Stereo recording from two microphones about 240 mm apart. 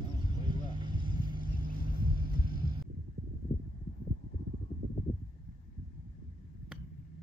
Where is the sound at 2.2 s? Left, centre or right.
Right.